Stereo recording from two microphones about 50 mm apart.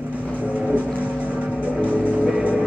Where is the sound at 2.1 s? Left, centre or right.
Right.